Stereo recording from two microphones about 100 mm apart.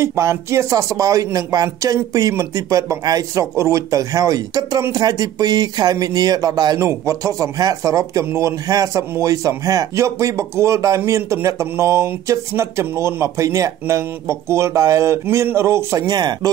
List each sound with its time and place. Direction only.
0.0 s speech: 30° right (ahead or behind)